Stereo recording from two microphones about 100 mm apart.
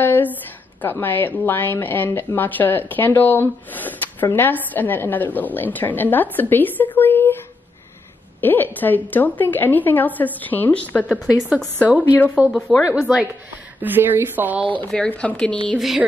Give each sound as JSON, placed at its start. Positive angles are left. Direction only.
{"t": 0.0, "sound": "a sound", "side_deg": 20}
{"t": 0.8, "sound": "a woman's voice", "side_deg": 20}
{"t": 8.4, "sound": "a woman's voice", "side_deg": 20}
{"t": 11.2, "sound": "a woman's voice", "side_deg": -10}
{"t": 12.4, "sound": "a woman's voice", "side_deg": -20}
{"t": 14.9, "sound": "a woman's voice", "side_deg": 15}